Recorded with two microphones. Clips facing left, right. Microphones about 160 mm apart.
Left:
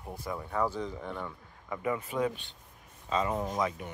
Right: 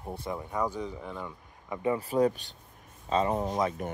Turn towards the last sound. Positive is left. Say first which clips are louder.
# right 3 dB
turn(degrees=-25)  # may be behind; listen again after turning